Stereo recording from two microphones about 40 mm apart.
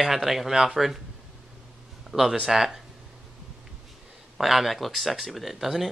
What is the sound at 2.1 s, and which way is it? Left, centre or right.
Speech, centre.